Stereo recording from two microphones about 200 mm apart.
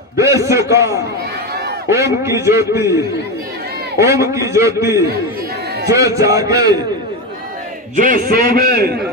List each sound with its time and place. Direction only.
0.2 s a man's voice: 15° right (ahead or behind)
4.0 s a man's voice: 15° right (ahead or behind)
5.9 s a man's voice: 15° right (ahead or behind)
7.9 s a man's voice: 40° right (ahead or behind)